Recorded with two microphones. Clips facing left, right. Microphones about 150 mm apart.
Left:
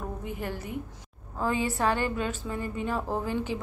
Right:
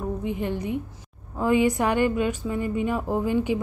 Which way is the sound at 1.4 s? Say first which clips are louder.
Right 6 dB; 15° right (ahead or behind).